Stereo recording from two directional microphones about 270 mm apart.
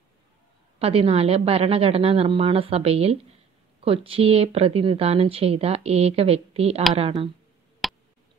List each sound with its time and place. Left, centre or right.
0.7 s speech: right
7.8 s tick: centre